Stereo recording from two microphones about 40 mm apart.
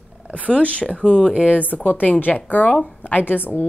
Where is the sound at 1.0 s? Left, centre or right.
Left.